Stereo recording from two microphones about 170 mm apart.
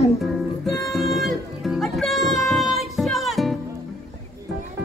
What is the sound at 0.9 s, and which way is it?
Music, centre (ahead or behind).